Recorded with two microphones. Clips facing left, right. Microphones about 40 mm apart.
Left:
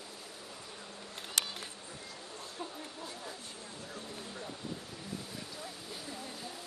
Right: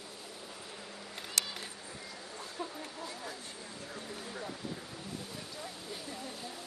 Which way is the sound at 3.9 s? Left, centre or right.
Centre.